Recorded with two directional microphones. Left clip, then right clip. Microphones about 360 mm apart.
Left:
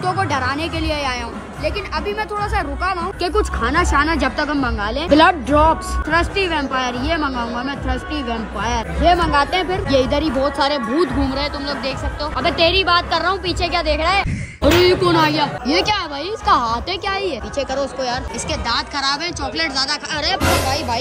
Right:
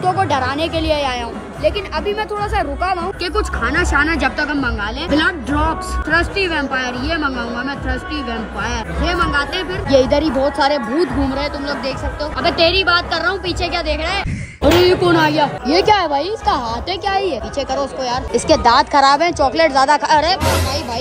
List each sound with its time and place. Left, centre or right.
0.0 s speech: centre
8.6 s speech: centre